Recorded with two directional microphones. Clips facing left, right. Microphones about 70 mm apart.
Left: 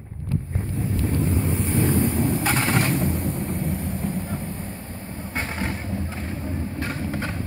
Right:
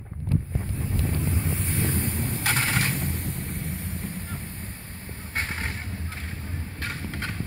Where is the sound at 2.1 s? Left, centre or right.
Left.